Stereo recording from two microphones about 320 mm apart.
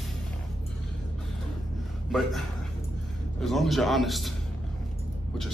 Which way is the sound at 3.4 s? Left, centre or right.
Centre.